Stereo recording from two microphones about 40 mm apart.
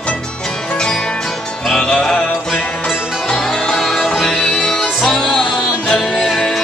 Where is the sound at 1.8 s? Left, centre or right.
Centre.